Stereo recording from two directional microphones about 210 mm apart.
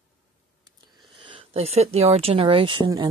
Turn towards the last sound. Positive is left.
turn(degrees=-20)  # may be behind; listen again after turning